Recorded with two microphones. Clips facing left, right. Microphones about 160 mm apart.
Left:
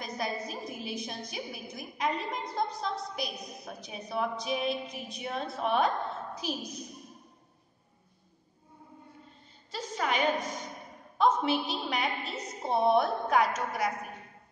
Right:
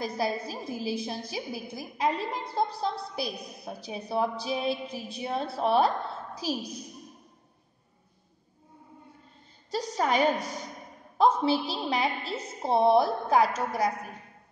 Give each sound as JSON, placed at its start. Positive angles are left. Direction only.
{"t": 0.0, "sound": "a woman's voice", "side_deg": -30}
{"t": 9.7, "sound": "a woman's voice", "side_deg": -40}